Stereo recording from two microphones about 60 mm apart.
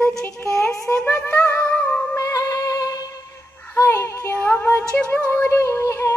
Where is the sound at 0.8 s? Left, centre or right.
Centre.